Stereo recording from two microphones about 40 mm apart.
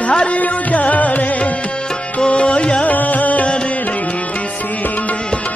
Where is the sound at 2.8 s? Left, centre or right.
Left.